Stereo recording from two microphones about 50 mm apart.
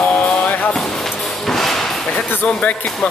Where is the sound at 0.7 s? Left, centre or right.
Centre.